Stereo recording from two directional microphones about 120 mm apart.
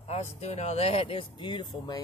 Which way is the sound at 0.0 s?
65° left (ahead or behind).